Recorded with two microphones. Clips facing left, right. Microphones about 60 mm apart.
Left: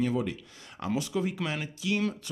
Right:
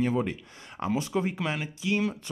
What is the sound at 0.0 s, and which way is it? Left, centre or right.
Speech, right.